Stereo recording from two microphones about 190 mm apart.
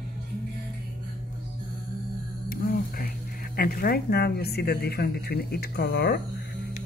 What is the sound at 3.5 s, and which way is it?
Speech, 50° left (ahead or behind).